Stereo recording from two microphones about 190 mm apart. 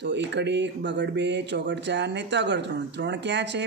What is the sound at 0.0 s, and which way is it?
Speech, 65° right (ahead or behind).